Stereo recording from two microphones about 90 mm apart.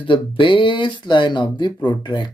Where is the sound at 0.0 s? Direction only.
70° left (ahead or behind).